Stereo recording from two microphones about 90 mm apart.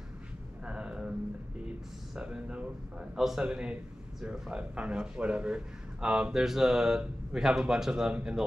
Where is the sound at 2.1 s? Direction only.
10° right (ahead or behind).